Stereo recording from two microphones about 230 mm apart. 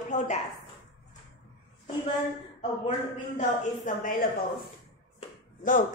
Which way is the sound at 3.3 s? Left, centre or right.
Left.